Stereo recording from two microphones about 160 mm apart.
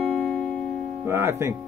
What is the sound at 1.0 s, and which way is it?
Speech, 15° right (ahead or behind).